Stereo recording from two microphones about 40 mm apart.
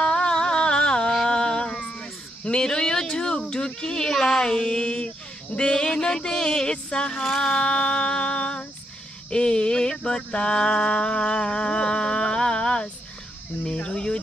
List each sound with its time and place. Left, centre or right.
0.0 s music: left
1.2 s a sound: centre
4.1 s speech: centre; by 5.1 s left
5.6 s mantra: left
7.2 s female singing: centre
9.3 s mantra: left
13.7 s cricket: left